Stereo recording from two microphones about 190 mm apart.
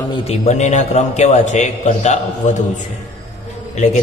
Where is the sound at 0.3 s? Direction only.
35° left (ahead or behind).